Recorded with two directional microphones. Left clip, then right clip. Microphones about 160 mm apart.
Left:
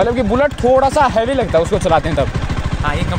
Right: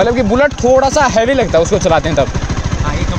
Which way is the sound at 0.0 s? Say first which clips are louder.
Right 3 dB; 5° right (ahead or behind).